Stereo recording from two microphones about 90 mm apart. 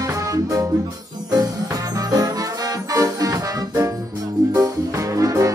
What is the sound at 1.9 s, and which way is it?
Music, 45° right (ahead or behind).